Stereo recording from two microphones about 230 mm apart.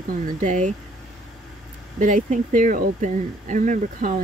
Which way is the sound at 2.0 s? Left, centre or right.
Right.